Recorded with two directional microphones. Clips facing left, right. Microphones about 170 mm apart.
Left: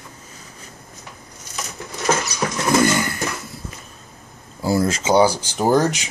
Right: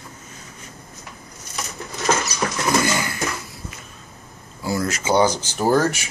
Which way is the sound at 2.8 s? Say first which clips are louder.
Left 4 dB; centre (ahead or behind).